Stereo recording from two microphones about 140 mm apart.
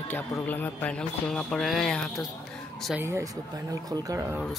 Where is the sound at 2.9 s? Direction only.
20° right (ahead or behind).